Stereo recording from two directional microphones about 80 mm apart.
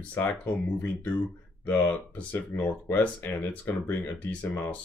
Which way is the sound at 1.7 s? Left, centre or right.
Centre.